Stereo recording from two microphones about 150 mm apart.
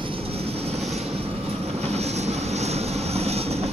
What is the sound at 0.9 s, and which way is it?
Vehicle, 45° right (ahead or behind).